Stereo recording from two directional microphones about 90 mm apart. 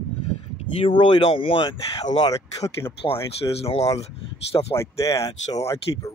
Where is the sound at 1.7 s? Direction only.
45° left (ahead or behind).